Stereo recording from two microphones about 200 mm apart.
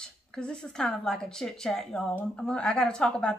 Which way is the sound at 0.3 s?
5° left (ahead or behind).